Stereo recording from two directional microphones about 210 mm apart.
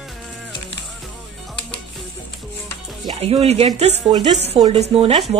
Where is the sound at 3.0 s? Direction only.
30° right (ahead or behind).